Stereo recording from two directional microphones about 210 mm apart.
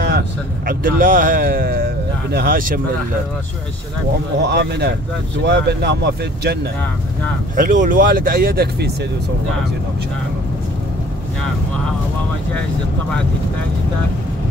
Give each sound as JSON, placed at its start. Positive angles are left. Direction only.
{"t": 0.7, "sound": "speech", "side_deg": -40}
{"t": 4.4, "sound": "speech", "side_deg": -55}
{"t": 7.5, "sound": "speech", "side_deg": -40}